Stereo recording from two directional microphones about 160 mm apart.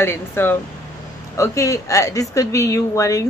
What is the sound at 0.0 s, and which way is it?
A woman's voice, 15° left (ahead or behind).